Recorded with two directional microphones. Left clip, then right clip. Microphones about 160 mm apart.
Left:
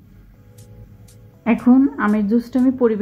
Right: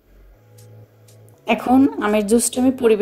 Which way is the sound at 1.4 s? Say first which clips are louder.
Even; 40° right (ahead or behind).